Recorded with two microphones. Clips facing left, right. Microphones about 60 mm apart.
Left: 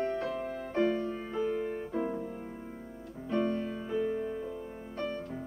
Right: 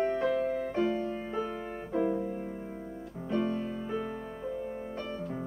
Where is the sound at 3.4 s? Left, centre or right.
Centre.